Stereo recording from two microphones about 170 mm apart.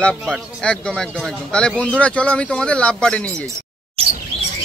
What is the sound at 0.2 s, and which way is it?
Speech, centre (ahead or behind).